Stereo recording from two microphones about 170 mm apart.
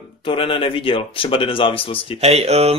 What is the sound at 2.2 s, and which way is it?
Speech, 40° right (ahead or behind).